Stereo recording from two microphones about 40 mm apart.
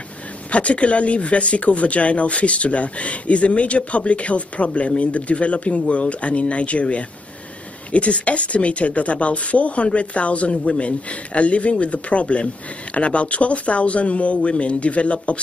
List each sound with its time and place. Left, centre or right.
0.5 s speech: left